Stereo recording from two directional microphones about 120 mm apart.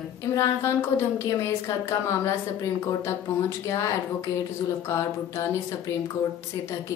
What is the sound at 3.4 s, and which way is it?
Speech, 25° left (ahead or behind).